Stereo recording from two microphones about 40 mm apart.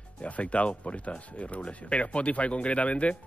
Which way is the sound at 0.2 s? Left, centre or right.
Left.